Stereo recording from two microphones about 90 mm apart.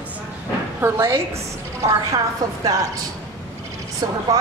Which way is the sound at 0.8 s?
30° right (ahead or behind).